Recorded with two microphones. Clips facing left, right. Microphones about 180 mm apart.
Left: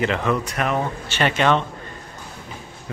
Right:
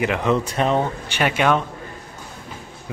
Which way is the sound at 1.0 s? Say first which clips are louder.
Even; 10° right (ahead or behind).